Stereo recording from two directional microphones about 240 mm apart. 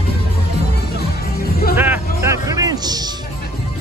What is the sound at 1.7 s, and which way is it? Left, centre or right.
Music, centre.